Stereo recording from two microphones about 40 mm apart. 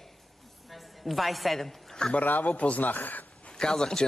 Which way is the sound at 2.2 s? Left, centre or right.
Left.